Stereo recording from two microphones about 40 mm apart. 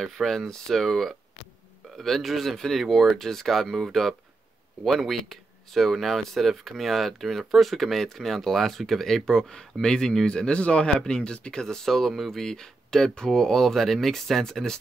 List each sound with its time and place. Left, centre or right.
0.0 s speech: centre
9.5 s speech: centre